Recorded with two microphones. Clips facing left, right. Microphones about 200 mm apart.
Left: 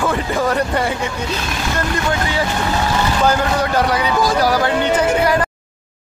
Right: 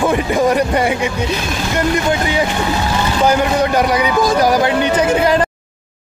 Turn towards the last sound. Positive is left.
turn(degrees=-20)  # may be behind; listen again after turning